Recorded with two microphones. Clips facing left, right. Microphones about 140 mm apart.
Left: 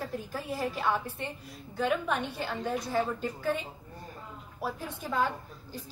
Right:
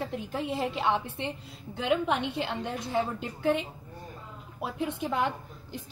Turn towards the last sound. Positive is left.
turn(degrees=-20)  # may be behind; listen again after turning